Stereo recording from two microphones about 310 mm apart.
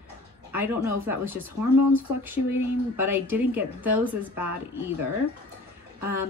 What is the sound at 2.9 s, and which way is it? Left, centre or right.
A woman's voice, centre.